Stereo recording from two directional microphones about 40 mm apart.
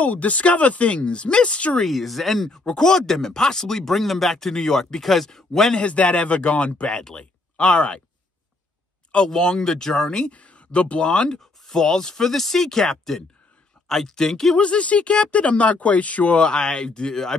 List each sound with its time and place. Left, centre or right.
0.0 s speech: left
1.9 s speech: centre
2.5 s speech: centre
5.8 s speech: left
9.3 s speech: centre
10.3 s speech: left; by 14.6 s centre
14.6 s speech: left
16.4 s speech: left